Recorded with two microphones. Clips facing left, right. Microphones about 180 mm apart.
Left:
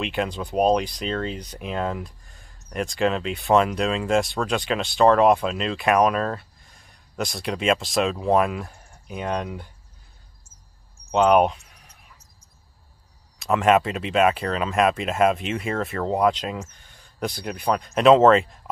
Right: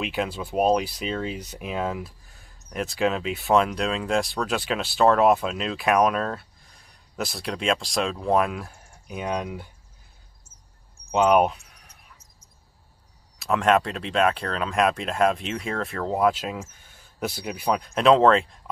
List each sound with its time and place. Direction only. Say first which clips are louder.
0.0 s speech: left 1 dB; 5° right (ahead or behind)
11.1 s a sound: left 2 dB; centre (ahead or behind)
13.4 s speech: left 2 dB; centre (ahead or behind)